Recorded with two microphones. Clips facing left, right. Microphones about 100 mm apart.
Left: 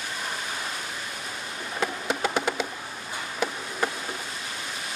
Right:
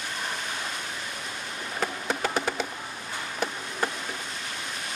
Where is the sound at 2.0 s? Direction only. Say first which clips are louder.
Left 1 dB; 15° left (ahead or behind).